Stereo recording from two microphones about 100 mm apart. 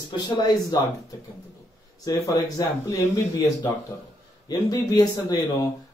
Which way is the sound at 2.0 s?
40° left (ahead or behind).